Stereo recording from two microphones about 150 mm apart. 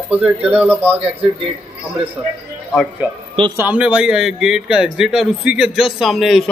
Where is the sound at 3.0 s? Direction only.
15° right (ahead or behind).